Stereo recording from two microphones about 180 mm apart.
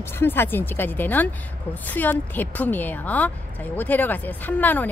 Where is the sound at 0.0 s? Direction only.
10° left (ahead or behind).